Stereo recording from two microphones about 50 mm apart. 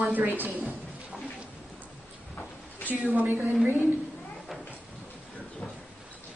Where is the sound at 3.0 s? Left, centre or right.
Right.